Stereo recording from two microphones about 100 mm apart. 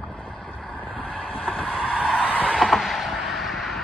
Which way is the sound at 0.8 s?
5° right (ahead or behind).